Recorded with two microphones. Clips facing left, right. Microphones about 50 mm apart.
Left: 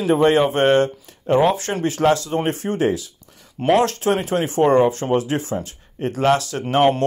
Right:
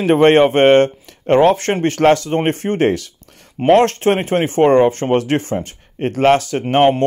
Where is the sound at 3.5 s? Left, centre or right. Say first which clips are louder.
Right 5 dB; right.